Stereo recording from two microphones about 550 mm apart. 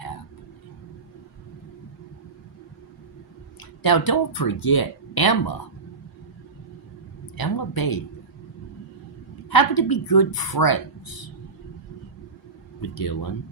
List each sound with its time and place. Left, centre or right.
3.8 s speech: left
7.3 s a sound: left
9.5 s speech: left
12.9 s speech: left